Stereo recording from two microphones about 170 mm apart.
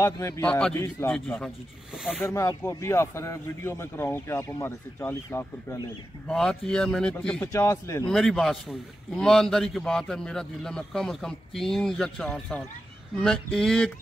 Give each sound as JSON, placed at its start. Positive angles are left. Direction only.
{"t": 0.0, "sound": "a man's voice", "side_deg": 15}
{"t": 0.5, "sound": "a man's voice", "side_deg": 5}
{"t": 1.1, "sound": "a man's voice", "side_deg": 5}
{"t": 2.2, "sound": "a man's voice", "side_deg": 15}
{"t": 7.5, "sound": "speech", "side_deg": 20}
{"t": 8.1, "sound": "a man's voice", "side_deg": 0}